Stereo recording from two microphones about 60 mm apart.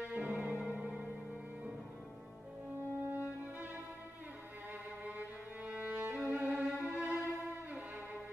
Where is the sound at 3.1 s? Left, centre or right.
Right.